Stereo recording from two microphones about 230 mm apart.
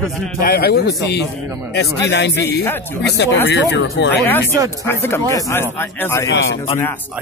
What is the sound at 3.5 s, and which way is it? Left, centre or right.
Speech, left.